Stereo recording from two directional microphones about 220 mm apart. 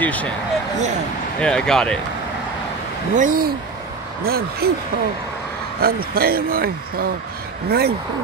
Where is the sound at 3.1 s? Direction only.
40° right (ahead or behind).